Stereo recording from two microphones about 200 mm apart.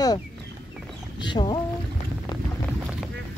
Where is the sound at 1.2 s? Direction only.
25° left (ahead or behind).